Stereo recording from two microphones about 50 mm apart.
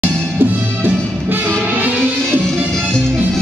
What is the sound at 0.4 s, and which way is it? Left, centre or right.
Music, right.